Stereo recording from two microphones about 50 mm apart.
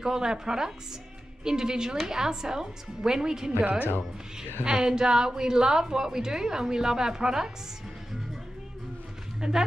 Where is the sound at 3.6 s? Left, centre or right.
Right.